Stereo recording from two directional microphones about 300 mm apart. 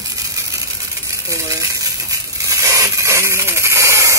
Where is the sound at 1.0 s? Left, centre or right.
Centre.